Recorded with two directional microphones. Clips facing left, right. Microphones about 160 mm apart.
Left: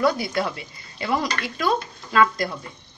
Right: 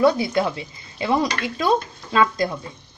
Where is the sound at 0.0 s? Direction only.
25° right (ahead or behind).